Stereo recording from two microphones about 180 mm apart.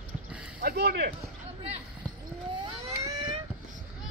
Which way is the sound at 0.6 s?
55° right (ahead or behind).